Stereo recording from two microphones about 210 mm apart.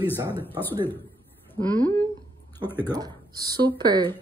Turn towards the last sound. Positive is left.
turn(degrees=-20)  # may be behind; listen again after turning